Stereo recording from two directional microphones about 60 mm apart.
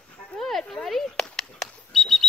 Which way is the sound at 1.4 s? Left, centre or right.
Centre.